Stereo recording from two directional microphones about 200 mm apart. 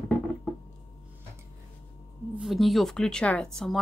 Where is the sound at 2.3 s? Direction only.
Centre (ahead or behind).